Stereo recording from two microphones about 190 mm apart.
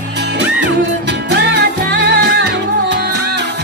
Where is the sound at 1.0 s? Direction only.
65° right (ahead or behind).